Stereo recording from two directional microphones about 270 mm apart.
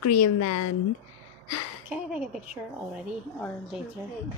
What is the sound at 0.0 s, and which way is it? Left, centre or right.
Speech, left.